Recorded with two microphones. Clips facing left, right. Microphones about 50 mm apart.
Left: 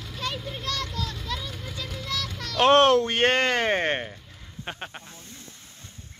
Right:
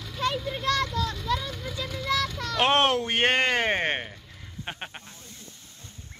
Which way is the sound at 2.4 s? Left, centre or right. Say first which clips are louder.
Left 6 dB; centre.